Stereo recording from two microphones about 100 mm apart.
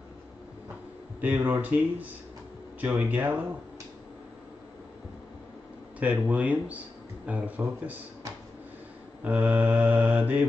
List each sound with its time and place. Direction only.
1.2 s mantra: 15° right (ahead or behind)
5.9 s mantra: 15° right (ahead or behind)
9.2 s mantra: 15° right (ahead or behind)